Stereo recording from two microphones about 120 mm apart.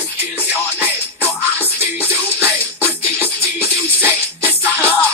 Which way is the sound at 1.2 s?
15° left (ahead or behind).